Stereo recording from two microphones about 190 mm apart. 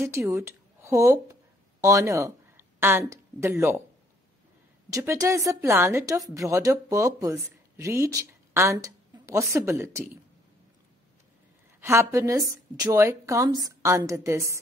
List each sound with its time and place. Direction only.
0.0 s speech: 15° right (ahead or behind)
4.9 s a woman's voice: 15° right (ahead or behind)
11.8 s a woman's voice: 15° right (ahead or behind)